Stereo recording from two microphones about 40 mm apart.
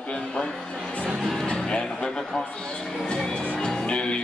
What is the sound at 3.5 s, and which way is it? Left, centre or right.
Music, left.